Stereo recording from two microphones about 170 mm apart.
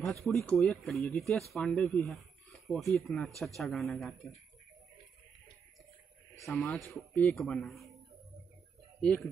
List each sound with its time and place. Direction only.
0.0 s speech: centre (ahead or behind)
6.3 s speech: centre (ahead or behind)